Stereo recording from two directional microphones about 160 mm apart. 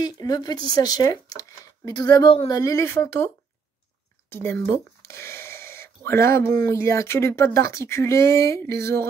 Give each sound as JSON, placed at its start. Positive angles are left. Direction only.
{"t": 0.0, "sound": "a woman's voice", "side_deg": 25}
{"t": 4.3, "sound": "speech", "side_deg": 15}